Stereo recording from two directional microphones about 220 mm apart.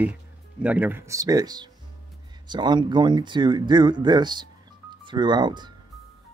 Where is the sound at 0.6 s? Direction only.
5° right (ahead or behind).